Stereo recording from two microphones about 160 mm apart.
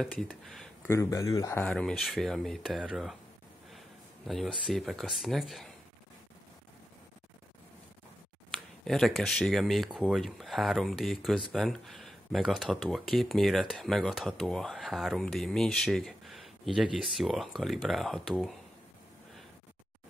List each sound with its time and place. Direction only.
0.0 s speech: 5° left (ahead or behind)
0.8 s speech: 20° left (ahead or behind)
1.6 s speech: 5° left (ahead or behind)
4.3 s speech: centre (ahead or behind)
8.5 s speech: centre (ahead or behind)